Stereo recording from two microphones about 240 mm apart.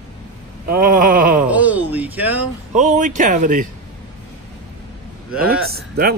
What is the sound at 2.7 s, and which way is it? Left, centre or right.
Speech, right.